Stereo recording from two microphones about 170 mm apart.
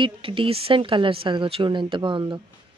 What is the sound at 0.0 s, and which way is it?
A woman's voice, 30° right (ahead or behind).